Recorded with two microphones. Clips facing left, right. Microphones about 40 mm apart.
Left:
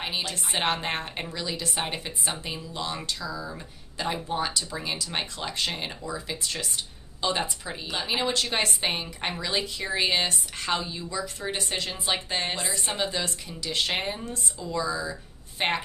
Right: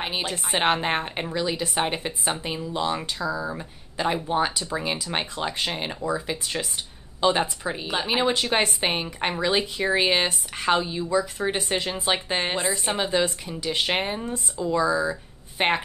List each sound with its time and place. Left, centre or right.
0.0 s a woman's voice: right